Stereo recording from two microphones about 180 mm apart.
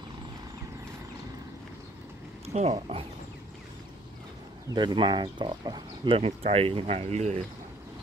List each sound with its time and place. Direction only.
2.4 s speech: 35° right (ahead or behind)
4.6 s speech: 25° right (ahead or behind)